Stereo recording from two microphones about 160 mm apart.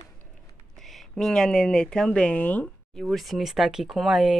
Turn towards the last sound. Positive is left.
turn(degrees=0)  # may be behind; listen again after turning